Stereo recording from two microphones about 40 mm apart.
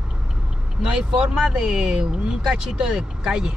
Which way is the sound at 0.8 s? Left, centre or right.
Centre.